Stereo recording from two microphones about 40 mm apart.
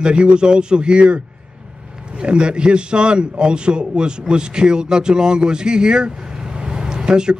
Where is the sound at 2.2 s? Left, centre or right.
Right.